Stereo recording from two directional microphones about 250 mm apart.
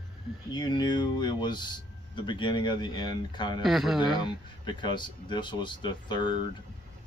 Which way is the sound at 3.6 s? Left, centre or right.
Centre.